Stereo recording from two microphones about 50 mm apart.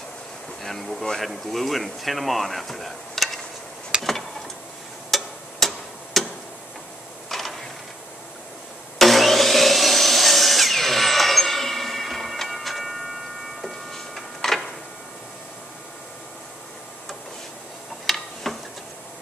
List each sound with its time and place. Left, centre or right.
0.7 s speech: centre
3.9 s a sound: centre
5.1 s a sound: centre
7.2 s mechanisms: centre
8.9 s wood: centre
13.6 s tick-tock: centre
18.0 s tick-tock: centre